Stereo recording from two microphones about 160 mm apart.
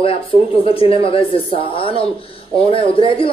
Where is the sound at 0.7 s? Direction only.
35° left (ahead or behind).